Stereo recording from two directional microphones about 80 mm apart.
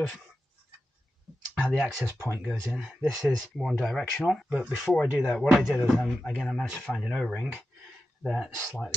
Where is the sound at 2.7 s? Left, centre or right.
Centre.